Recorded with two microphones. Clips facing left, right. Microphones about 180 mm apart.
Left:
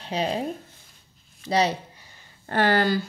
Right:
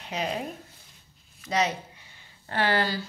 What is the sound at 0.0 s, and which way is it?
A woman's voice, 30° left (ahead or behind).